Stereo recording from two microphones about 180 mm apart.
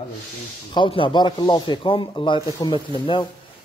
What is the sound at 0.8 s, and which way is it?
Speech, 30° left (ahead or behind).